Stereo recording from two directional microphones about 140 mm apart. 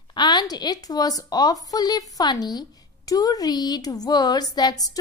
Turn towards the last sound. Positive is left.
turn(degrees=25)  # may be behind; listen again after turning